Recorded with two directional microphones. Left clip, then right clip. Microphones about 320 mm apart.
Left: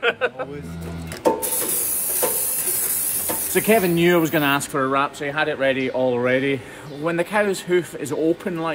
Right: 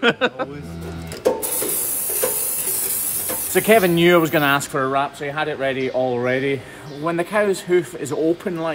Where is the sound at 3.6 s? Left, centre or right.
Centre.